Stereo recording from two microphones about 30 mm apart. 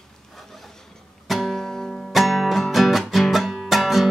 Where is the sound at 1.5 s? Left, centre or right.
Centre.